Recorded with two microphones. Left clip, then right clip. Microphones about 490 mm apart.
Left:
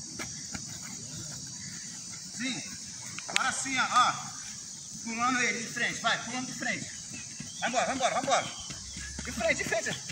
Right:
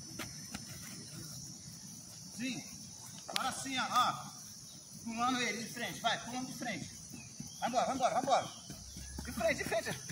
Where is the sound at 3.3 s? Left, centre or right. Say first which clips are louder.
Left 8 dB; right.